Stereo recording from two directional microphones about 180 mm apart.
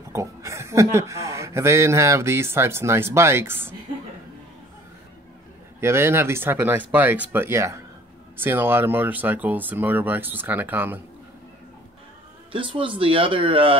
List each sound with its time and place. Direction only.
0.1 s speech: 15° right (ahead or behind)
5.8 s speech: 15° right (ahead or behind)
12.5 s speech: 30° right (ahead or behind)